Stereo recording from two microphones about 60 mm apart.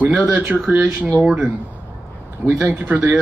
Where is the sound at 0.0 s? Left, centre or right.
Right.